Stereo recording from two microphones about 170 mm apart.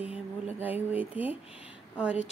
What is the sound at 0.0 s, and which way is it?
Speech, 10° right (ahead or behind).